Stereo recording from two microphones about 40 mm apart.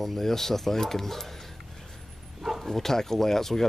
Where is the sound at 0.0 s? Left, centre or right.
Centre.